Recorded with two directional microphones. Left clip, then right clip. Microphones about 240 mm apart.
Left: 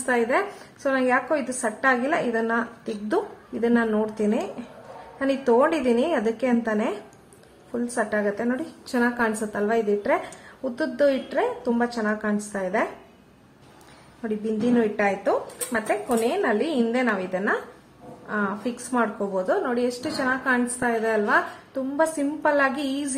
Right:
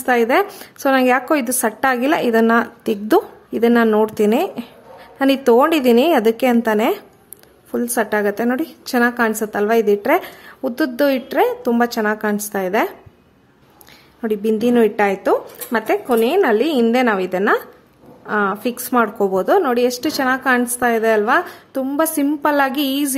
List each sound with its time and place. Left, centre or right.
0.0 s a woman's voice: right
14.2 s a woman's voice: right